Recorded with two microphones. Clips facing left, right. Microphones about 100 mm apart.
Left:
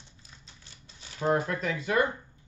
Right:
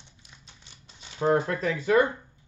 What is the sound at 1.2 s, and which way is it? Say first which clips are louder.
Speech: right 3 dB; 35° right (ahead or behind).